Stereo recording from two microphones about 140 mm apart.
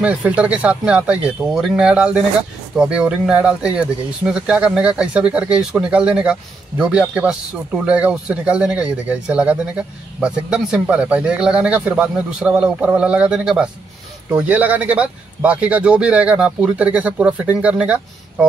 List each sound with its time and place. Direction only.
0.0 s speech: 10° right (ahead or behind)